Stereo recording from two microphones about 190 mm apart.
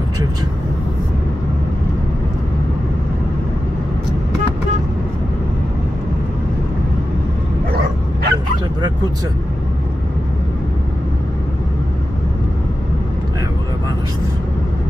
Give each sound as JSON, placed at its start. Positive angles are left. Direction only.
{"t": 7.7, "sound": "bow-wow", "side_deg": -55}